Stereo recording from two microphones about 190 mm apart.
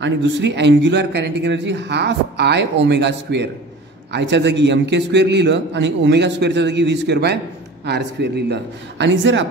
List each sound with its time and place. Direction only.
0.0 s speech: 70° right (ahead or behind)